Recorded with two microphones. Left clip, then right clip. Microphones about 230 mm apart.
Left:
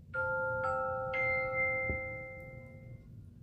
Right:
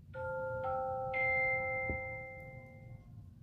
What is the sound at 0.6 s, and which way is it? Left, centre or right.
Glockenspiel, left.